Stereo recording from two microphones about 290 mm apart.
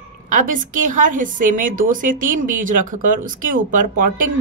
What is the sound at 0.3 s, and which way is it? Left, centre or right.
A woman's voice, right.